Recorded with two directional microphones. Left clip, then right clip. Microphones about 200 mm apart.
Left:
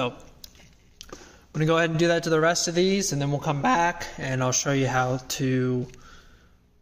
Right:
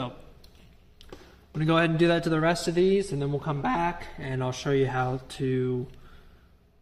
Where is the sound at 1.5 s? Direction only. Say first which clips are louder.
Left 1 dB; 25° left (ahead or behind).